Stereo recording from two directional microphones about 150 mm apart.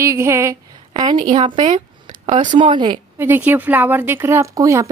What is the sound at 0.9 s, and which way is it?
A woman's voice, 30° right (ahead or behind).